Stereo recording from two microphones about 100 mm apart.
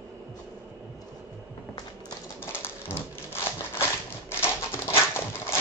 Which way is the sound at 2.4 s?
25° left (ahead or behind).